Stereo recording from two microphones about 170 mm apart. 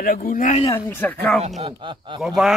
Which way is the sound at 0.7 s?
10° left (ahead or behind).